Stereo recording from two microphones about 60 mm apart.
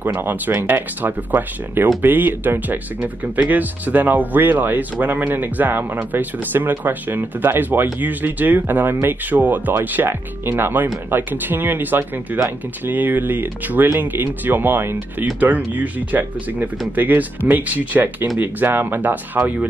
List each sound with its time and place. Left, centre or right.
0.0 s speech: right